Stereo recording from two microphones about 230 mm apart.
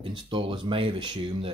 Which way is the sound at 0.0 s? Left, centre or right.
Right.